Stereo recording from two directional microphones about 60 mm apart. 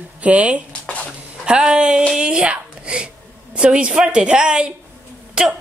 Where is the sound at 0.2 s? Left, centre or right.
Right.